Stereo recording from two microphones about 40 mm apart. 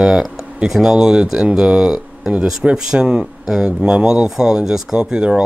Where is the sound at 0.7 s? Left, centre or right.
Centre.